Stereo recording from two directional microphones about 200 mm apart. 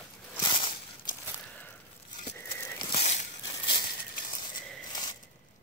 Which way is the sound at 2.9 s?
35° left (ahead or behind).